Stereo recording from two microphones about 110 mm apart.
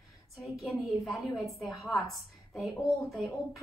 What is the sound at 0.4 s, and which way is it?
A woman's voice, centre (ahead or behind).